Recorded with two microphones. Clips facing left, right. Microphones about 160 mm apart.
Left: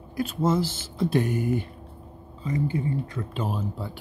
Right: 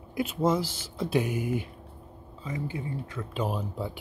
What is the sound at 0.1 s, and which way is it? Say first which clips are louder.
Speech: left 1 dB; 20° right (ahead or behind).